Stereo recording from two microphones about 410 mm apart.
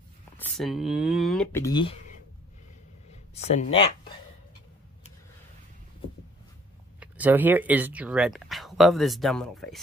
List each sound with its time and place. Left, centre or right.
0.4 s speech: centre
3.5 s speech: left
7.0 s speech: centre